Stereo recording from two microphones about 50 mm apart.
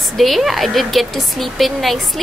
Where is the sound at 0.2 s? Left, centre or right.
Centre.